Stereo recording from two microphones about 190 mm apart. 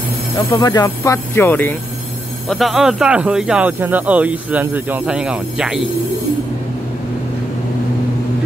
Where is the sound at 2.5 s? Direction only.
Centre (ahead or behind).